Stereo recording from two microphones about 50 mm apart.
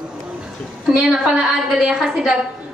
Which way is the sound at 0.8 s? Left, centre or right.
Centre.